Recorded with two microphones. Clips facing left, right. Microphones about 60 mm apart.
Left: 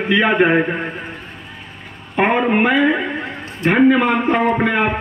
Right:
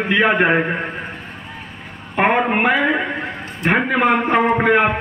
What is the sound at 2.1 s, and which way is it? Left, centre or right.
Speech, centre.